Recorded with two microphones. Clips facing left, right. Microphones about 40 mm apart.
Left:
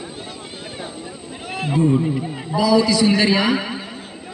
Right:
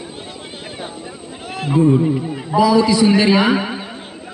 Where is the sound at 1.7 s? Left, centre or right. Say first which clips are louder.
Right 4 dB; centre.